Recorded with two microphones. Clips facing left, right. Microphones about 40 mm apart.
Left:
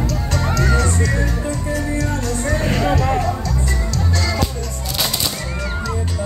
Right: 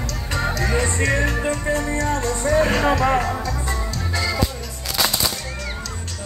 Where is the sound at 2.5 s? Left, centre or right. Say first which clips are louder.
Right 2 dB; centre.